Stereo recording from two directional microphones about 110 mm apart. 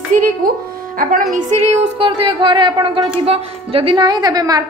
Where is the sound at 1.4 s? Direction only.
90° right.